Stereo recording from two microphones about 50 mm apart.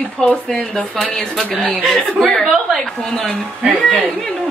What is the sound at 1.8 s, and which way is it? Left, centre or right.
Speech, centre.